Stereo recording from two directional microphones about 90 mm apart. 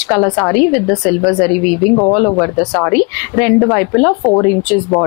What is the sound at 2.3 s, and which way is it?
A woman's voice, 25° left (ahead or behind).